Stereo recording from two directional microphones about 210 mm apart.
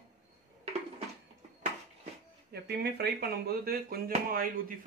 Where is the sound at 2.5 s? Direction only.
50° right (ahead or behind).